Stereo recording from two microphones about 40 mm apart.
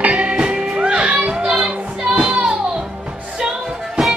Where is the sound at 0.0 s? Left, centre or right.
Right.